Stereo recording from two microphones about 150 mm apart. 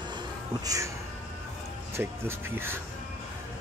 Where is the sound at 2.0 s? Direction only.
15° right (ahead or behind).